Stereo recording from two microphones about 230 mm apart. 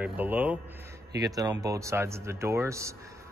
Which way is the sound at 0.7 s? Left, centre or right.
Centre.